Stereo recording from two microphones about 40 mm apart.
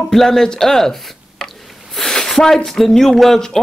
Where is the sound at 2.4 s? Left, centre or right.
Centre.